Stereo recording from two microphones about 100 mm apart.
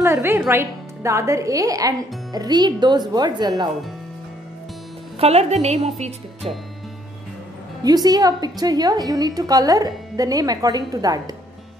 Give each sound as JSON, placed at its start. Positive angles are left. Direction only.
{"t": 0.0, "sound": "a woman's voice", "side_deg": -25}
{"t": 5.2, "sound": "a woman's voice", "side_deg": -90}
{"t": 7.8, "sound": "a woman's voice", "side_deg": -40}